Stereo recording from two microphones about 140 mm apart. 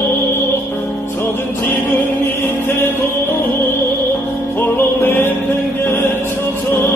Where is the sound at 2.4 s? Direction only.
15° left (ahead or behind).